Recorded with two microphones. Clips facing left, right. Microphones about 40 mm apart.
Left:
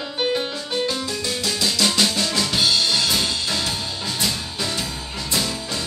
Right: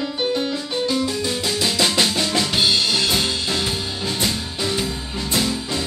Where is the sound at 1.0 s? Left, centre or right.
Centre.